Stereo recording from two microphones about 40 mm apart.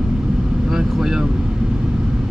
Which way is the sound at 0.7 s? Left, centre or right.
Centre.